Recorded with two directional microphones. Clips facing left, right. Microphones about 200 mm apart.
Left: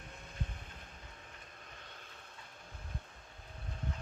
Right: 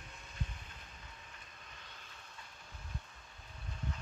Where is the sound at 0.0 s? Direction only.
55° left (ahead or behind).